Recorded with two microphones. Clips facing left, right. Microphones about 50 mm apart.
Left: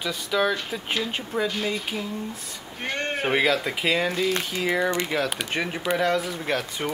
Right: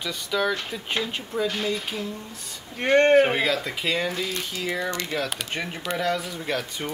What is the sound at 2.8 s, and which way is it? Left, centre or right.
Speech, right.